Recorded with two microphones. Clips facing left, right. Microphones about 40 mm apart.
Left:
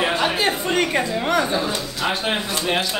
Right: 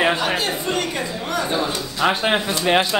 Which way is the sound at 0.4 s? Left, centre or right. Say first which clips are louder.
Left 3 dB; left.